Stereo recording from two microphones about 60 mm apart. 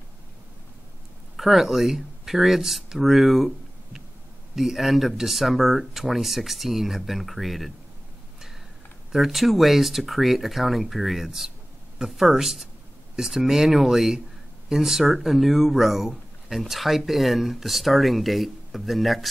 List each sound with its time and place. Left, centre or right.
1.3 s speech: centre
9.1 s speech: centre